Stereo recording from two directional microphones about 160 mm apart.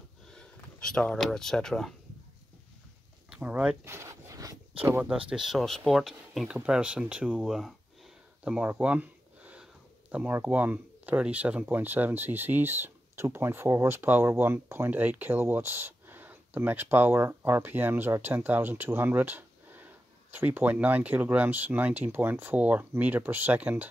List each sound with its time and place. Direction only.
0.3 s speech: 5° left (ahead or behind)
3.3 s zipper: 10° right (ahead or behind)
4.8 s speech: 10° right (ahead or behind)
8.5 s a sound: 10° right (ahead or behind)
10.1 s speech: 10° right (ahead or behind)